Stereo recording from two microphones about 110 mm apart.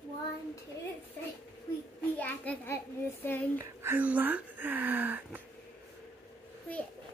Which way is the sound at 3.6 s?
25° right (ahead or behind).